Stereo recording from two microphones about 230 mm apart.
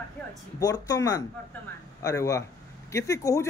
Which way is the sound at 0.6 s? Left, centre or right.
Centre.